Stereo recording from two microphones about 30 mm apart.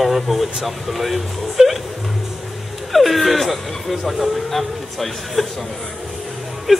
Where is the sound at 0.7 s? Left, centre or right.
Centre.